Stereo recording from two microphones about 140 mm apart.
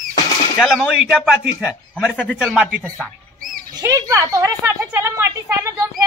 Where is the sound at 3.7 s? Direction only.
25° right (ahead or behind).